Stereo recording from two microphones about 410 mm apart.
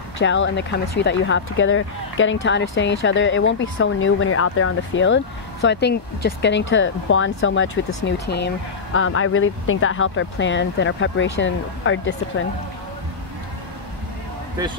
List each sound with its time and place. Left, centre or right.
0.2 s speech: left